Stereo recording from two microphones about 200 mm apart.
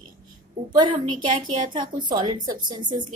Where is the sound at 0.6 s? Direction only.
20° right (ahead or behind).